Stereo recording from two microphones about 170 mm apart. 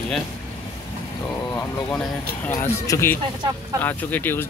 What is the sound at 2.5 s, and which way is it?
Speech, 20° left (ahead or behind).